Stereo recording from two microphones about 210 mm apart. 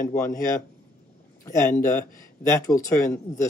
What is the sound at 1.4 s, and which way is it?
Speech, 15° left (ahead or behind).